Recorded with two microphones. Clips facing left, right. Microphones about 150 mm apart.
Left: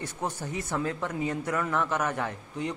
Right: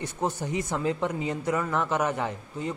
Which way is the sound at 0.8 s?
10° right (ahead or behind).